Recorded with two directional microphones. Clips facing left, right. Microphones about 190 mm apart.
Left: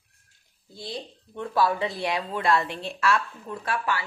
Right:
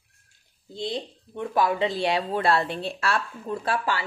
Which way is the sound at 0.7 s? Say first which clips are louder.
Right 6 dB; 20° right (ahead or behind).